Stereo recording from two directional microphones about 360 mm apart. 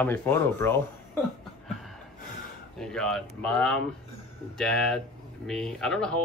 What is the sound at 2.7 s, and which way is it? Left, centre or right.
Speech, centre.